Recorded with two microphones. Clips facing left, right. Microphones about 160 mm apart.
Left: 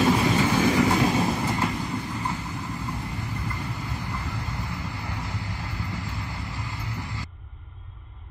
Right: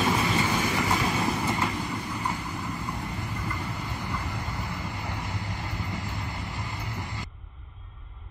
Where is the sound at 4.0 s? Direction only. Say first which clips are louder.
Even; 20° right (ahead or behind).